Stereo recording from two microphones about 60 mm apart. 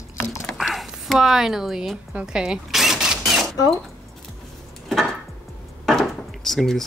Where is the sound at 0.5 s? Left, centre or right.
Centre.